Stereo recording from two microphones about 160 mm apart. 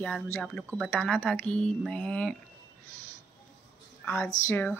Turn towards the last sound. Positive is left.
turn(degrees=15)  # may be behind; listen again after turning